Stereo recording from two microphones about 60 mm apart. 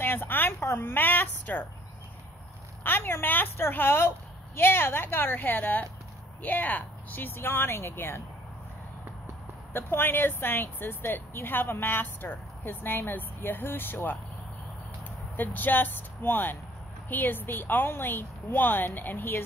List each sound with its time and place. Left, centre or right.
0.0 s a sound: left
0.6 s speech: left
2.8 s speech: left
9.7 s speech: left
15.3 s speech: left